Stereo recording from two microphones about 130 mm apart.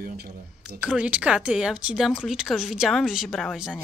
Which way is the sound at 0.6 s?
10° right (ahead or behind).